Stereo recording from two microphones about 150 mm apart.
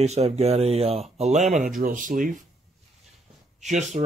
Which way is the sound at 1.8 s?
65° right (ahead or behind).